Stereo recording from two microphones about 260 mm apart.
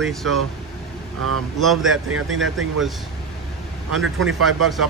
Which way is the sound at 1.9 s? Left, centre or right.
Right.